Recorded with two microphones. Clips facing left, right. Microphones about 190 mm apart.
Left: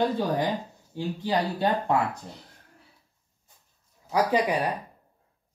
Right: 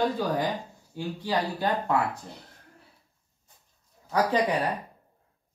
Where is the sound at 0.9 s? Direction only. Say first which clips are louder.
Left 2 dB; 20° left (ahead or behind).